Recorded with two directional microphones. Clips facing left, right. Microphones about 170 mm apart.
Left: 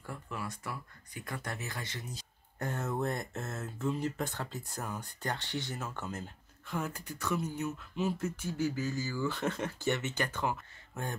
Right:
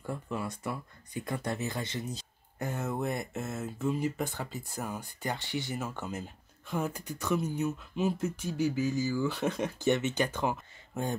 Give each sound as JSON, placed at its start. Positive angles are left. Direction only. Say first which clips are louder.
{"t": 0.0, "sound": "speech", "louder": "right 5 dB", "side_deg": -25}
{"t": 2.6, "sound": "speech", "louder": "right 1 dB", "side_deg": -5}